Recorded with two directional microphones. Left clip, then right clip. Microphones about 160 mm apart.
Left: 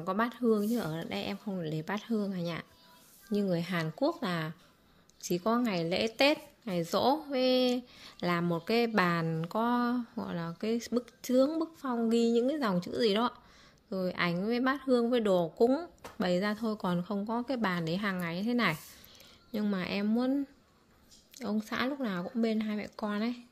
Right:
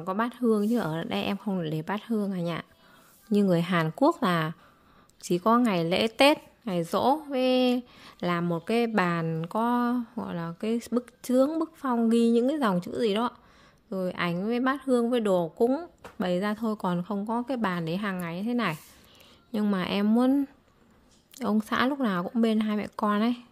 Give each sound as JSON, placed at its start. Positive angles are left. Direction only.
{"t": 0.0, "sound": "a woman's voice", "side_deg": -20}
{"t": 3.3, "sound": "a woman's voice", "side_deg": -40}
{"t": 19.5, "sound": "a woman's voice", "side_deg": -30}